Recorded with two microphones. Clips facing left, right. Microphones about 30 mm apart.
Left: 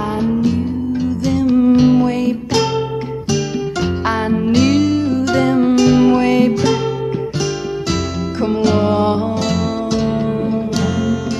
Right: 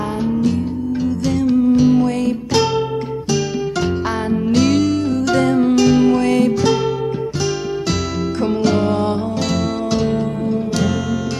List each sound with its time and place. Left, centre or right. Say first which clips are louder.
0.0 s music: left 2 dB; centre
1.6 s music: left 2 dB; left
2.0 s music: left 1 dB; centre
3.8 s music: left 2 dB; centre
7.9 s music: even; centre
8.8 s music: left 3 dB; left
9.5 s music: left 1 dB; centre
10.1 s music: left 2 dB; left
10.8 s music: left 2 dB; centre